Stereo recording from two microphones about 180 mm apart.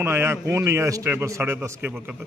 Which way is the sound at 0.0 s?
15° right (ahead or behind).